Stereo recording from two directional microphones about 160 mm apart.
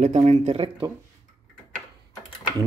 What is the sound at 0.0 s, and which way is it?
Speech, 45° right (ahead or behind).